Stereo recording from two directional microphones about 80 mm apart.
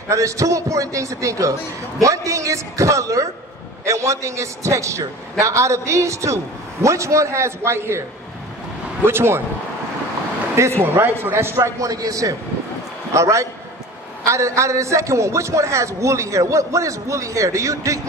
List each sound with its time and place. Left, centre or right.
0.1 s a man's voice: right
9.0 s a man's voice: right
10.8 s a man's voice: right